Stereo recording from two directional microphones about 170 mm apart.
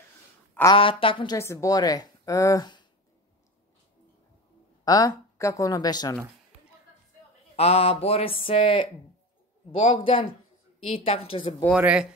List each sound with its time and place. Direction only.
0.7 s a woman's voice: 30° left (ahead or behind)
4.8 s a woman's voice: 20° left (ahead or behind)
7.5 s a sound: 35° left (ahead or behind)
11.7 s speech: 5° right (ahead or behind)